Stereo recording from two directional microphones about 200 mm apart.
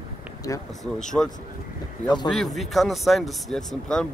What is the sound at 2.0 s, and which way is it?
Speech, 20° left (ahead or behind).